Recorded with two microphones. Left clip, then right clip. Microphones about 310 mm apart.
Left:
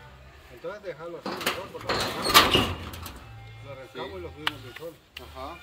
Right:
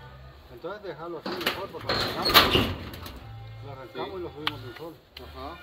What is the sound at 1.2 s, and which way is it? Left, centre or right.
Speech, centre.